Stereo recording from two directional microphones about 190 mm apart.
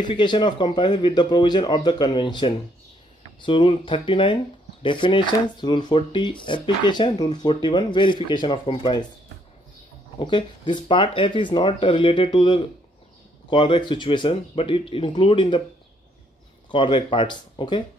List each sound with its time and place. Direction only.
0.0 s speech: 25° left (ahead or behind)
10.1 s speech: 25° left (ahead or behind)
16.7 s speech: 25° left (ahead or behind)